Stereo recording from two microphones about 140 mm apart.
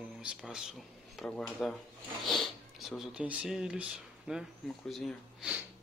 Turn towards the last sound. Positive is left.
turn(degrees=-5)  # may be behind; listen again after turning